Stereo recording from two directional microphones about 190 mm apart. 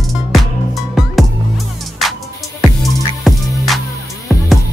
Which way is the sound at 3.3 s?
Centre (ahead or behind).